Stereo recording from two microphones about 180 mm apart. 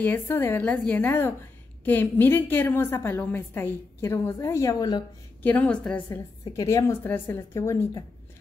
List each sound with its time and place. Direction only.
0.0 s a woman's voice: 10° left (ahead or behind)
5.4 s a woman's voice: 10° left (ahead or behind)